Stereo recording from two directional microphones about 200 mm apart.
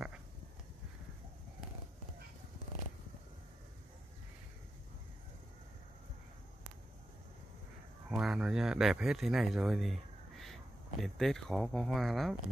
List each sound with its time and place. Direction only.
8.1 s speech: 5° right (ahead or behind)